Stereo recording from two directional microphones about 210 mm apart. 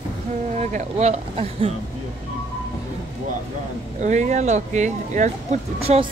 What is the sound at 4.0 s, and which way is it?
Speech, 35° right (ahead or behind).